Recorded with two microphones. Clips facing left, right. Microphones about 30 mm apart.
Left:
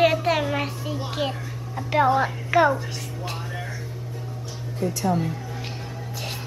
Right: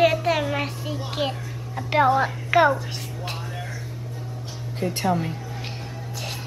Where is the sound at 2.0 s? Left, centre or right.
Centre.